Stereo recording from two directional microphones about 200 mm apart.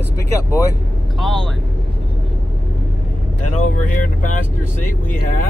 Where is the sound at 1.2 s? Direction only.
Centre (ahead or behind).